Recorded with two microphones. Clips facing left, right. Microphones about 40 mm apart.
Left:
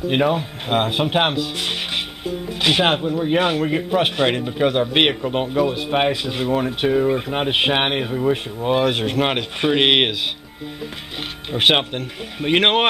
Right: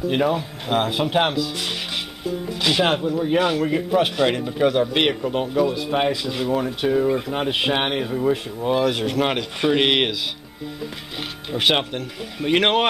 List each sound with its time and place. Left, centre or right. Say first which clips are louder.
0.1 s speech: left 3 dB; left
11.5 s speech: left 3 dB; left